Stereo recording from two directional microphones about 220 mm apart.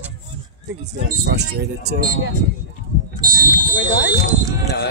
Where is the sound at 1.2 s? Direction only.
50° right (ahead or behind).